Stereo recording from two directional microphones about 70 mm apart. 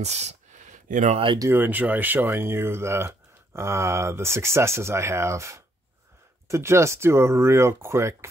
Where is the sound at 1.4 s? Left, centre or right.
Right.